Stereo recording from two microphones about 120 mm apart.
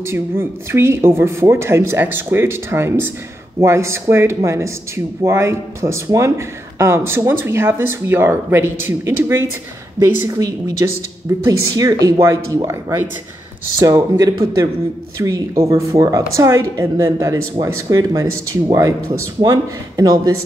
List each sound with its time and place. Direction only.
0.0 s speech: 20° right (ahead or behind)